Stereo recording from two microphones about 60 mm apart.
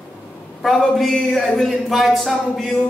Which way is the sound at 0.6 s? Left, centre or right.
Centre.